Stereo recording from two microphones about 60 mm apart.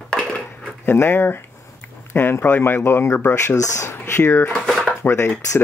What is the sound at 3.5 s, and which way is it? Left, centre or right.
Speech, left.